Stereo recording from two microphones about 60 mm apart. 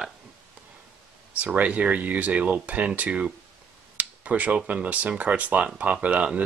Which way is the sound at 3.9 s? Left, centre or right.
Right.